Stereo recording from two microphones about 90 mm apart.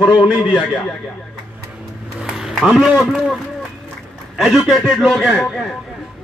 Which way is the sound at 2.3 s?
5° right (ahead or behind).